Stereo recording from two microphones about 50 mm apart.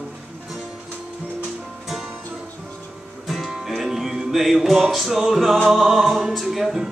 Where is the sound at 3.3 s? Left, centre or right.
Centre.